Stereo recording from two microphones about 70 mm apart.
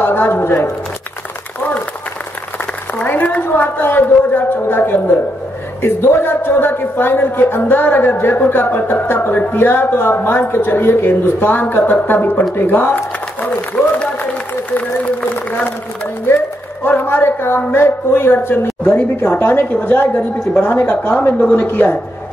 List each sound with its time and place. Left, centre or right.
0.0 s a sound: left
3.0 s a woman's voice: left
13.8 s applause: centre
16.8 s a man's voice: left